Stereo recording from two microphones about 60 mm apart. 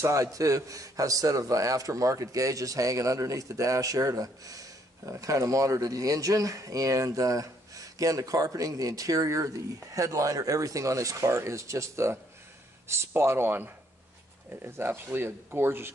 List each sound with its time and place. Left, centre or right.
0.1 s a man's voice: right